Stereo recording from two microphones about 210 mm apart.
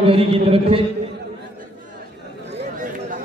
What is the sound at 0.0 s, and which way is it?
Speech, 25° right (ahead or behind).